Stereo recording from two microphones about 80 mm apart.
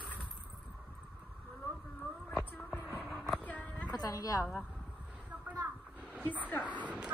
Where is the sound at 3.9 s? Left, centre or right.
Left.